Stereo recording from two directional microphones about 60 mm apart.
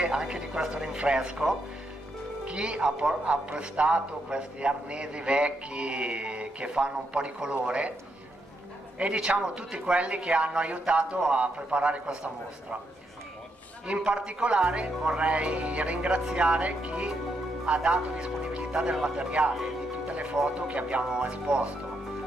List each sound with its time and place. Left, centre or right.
0.0 s a man's voice: centre
8.9 s speech: centre
13.8 s a man's voice: centre